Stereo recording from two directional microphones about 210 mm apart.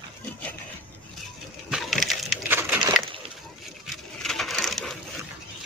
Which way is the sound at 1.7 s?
Centre (ahead or behind).